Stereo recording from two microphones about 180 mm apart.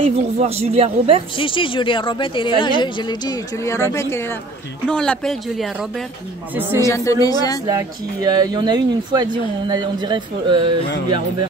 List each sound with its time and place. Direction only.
0.1 s speech: 35° right (ahead or behind)
1.3 s speech: 30° left (ahead or behind); by 6.0 s centre (ahead or behind)
6.8 s speech: 15° left (ahead or behind)
7.6 s speech: 20° right (ahead or behind)